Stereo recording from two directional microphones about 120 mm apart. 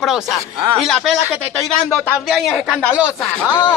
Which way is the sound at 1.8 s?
Centre (ahead or behind).